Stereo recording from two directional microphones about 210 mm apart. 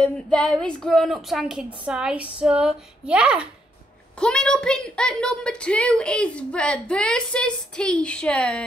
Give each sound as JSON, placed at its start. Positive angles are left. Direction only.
{"t": 0.0, "sound": "a woman's voice", "side_deg": 5}